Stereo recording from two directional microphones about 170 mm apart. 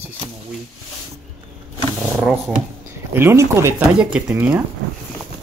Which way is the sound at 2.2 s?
5° right (ahead or behind).